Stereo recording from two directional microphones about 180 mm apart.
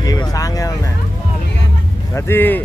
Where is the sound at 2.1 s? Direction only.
10° left (ahead or behind).